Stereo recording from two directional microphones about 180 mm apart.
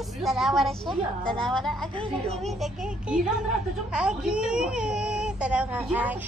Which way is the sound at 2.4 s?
Centre (ahead or behind).